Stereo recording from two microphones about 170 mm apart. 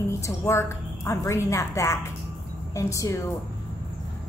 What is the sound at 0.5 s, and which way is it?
A woman's voice, 15° left (ahead or behind).